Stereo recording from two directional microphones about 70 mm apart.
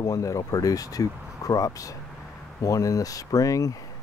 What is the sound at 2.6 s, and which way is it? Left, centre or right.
Speech, left.